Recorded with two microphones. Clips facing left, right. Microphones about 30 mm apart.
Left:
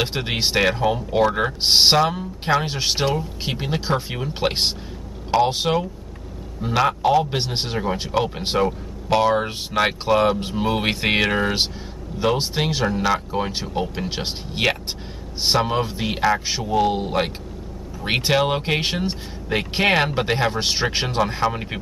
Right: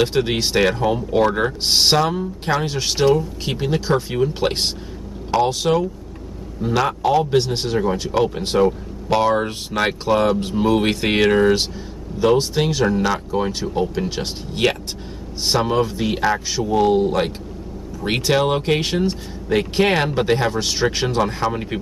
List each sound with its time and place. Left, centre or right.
0.0 s speech: centre
6.6 s speech: centre
7.3 s speech: left
8.6 s speech: centre
12.2 s speech: left
12.8 s speech: centre
13.7 s speech: centre
18.3 s speech: centre
18.8 s speech: centre
21.3 s speech: centre